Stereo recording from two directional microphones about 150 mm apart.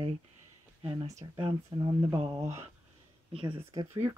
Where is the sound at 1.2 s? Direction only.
30° right (ahead or behind).